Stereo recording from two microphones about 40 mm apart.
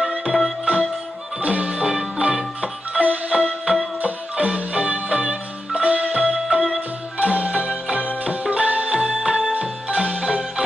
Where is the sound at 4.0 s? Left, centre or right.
Right.